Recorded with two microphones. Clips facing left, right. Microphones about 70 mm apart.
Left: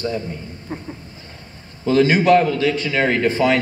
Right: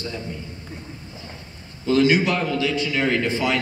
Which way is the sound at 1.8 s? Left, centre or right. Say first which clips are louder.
Left 3 dB; left.